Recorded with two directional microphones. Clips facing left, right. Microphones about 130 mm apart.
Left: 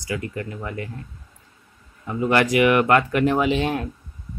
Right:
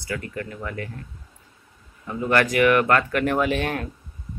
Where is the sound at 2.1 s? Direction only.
15° left (ahead or behind).